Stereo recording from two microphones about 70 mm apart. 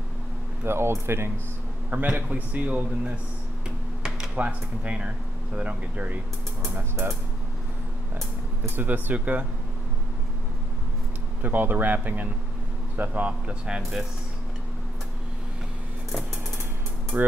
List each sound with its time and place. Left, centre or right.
0.7 s speech: right
1.9 s a man's voice: right
4.4 s a man's voice: centre
6.8 s speech: right
8.6 s a man's voice: right
11.4 s a man's voice: right
17.1 s a man's voice: right